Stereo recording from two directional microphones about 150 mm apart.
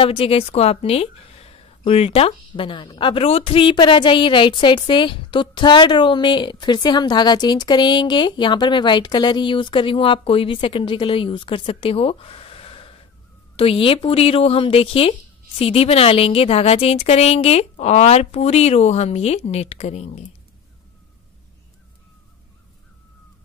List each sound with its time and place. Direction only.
0.0 s a woman's voice: 40° left (ahead or behind)